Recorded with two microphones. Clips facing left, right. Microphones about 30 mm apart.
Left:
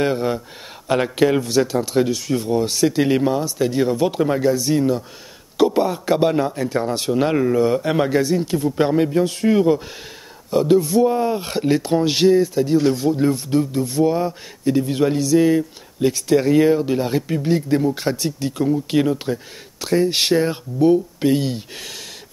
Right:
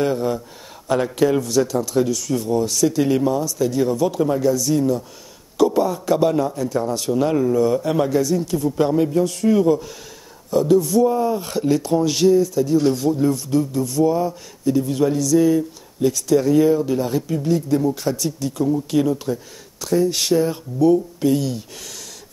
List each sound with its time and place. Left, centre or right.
0.0 s a man's voice: left
12.8 s speech: left
13.1 s a man's voice: left